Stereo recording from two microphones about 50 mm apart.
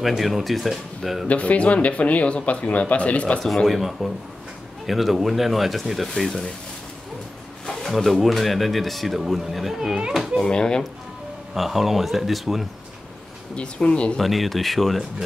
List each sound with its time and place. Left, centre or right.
0.2 s speech: centre
1.2 s speech: left
3.6 s speech: centre
7.6 s speech: centre
10.4 s speech: centre
11.5 s speech: centre
13.6 s speech: left
14.1 s speech: centre